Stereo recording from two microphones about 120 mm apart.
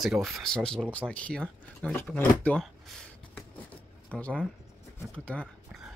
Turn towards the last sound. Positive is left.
turn(degrees=10)  # may be behind; listen again after turning